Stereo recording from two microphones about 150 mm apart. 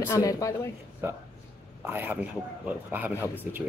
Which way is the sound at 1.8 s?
10° right (ahead or behind).